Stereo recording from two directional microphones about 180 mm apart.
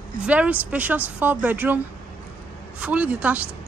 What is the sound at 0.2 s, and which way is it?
Speech, 10° right (ahead or behind).